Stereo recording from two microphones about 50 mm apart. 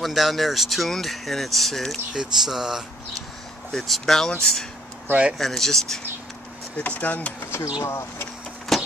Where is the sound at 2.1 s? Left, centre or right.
Centre.